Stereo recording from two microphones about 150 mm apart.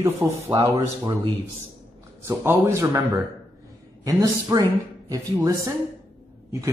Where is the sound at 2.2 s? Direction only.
20° right (ahead or behind).